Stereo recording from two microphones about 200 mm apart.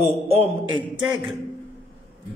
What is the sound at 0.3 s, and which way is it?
Speech, 30° right (ahead or behind).